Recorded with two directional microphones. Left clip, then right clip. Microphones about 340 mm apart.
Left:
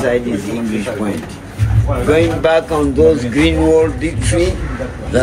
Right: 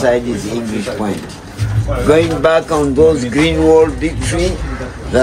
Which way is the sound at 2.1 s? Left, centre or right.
Right.